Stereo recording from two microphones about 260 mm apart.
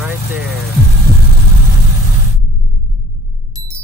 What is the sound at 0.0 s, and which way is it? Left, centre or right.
Vehicle, centre.